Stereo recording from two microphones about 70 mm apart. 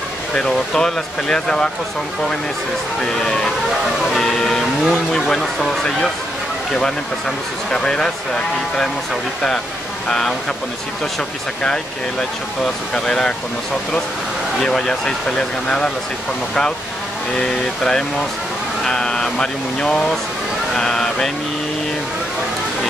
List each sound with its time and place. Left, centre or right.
0.3 s speech: centre
3.0 s speech: centre
11.6 s speech: centre
14.6 s speech: centre
17.4 s speech: centre